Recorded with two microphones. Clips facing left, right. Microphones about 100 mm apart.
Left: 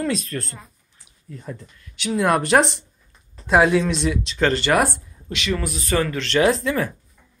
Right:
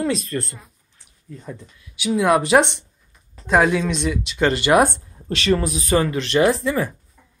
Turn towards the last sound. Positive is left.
turn(degrees=0)  # may be behind; listen again after turning